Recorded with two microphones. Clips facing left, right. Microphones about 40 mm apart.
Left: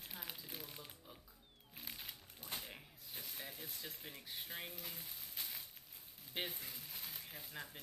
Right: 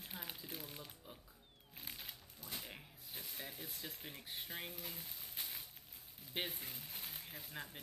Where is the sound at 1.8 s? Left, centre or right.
Centre.